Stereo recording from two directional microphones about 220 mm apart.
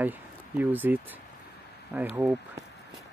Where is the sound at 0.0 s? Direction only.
10° right (ahead or behind).